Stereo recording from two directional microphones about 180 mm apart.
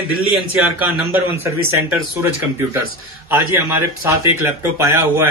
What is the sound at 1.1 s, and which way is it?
Speech, 10° right (ahead or behind).